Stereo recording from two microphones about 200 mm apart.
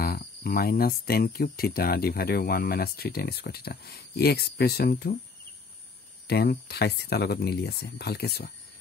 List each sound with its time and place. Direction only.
0.0 s speech: 45° left (ahead or behind)
6.2 s speech: 50° left (ahead or behind)